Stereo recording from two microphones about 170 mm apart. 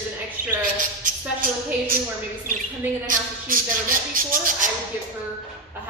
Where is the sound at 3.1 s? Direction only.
55° right (ahead or behind).